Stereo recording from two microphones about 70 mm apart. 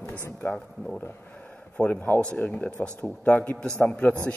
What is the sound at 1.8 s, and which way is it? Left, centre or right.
A man's voice, left.